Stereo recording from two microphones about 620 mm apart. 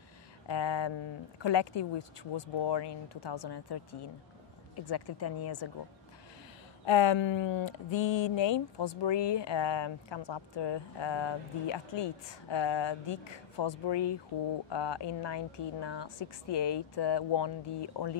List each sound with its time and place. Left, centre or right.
0.5 s speech: left
6.9 s speech: left